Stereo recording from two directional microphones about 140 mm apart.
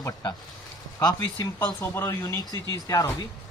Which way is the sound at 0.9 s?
25° left (ahead or behind).